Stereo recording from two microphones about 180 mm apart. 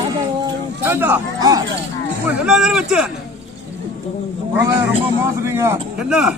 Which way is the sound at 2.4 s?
5° right (ahead or behind).